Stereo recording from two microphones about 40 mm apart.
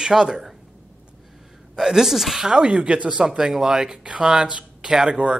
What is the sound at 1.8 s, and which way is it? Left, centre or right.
Speech, centre.